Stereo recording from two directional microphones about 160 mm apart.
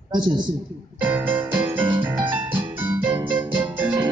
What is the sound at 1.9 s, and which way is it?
Music, 30° right (ahead or behind).